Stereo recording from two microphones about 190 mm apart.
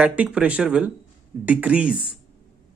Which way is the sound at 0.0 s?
5° right (ahead or behind).